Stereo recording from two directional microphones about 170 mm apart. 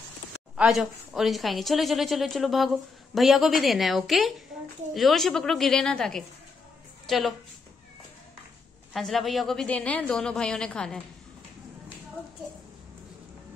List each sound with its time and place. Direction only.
0.6 s a woman's voice: centre (ahead or behind)
8.9 s a woman's voice: centre (ahead or behind)